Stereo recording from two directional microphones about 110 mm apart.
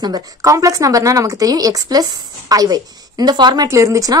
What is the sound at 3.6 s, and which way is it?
Speech, 30° right (ahead or behind).